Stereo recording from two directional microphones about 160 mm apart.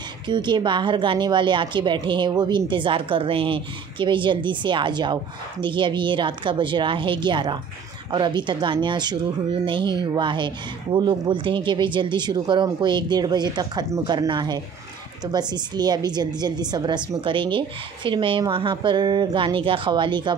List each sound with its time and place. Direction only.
0.3 s speech: 30° right (ahead or behind)